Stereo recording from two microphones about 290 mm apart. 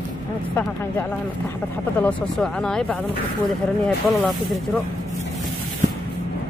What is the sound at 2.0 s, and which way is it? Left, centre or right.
Speech, centre.